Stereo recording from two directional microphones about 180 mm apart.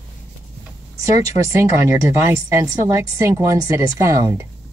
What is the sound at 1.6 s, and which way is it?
A woman's voice, 15° right (ahead or behind).